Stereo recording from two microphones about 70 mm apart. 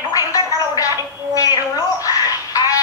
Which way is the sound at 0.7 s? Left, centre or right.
Left.